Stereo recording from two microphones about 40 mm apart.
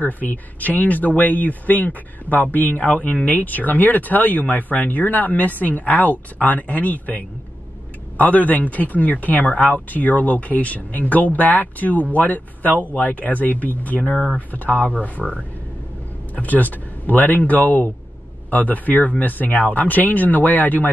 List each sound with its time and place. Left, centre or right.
0.0 s speech: left